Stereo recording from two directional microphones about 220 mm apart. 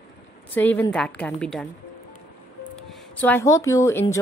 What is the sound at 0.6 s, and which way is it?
A woman's voice, 10° left (ahead or behind).